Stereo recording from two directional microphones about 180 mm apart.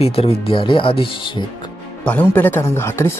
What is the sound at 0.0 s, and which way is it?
Speech, 30° left (ahead or behind).